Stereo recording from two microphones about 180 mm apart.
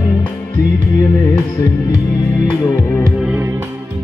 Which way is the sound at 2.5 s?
10° left (ahead or behind).